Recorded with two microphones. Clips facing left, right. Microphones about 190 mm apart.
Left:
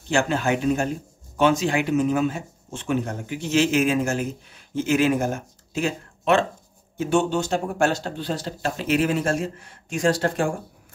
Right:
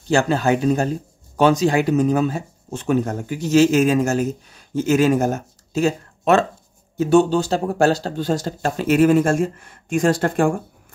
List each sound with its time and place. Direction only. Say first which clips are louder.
0.1 s speech: right 4 dB; 35° right (ahead or behind); by 10.5 s 55° right (ahead or behind)